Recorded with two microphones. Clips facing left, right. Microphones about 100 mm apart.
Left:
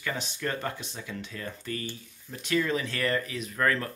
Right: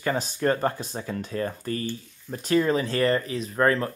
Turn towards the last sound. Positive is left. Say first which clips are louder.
# right 5 dB
turn(degrees=-30)  # may be behind; listen again after turning